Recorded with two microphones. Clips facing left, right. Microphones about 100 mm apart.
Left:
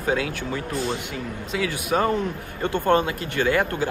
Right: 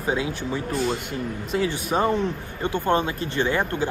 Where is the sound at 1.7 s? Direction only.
25° right (ahead or behind).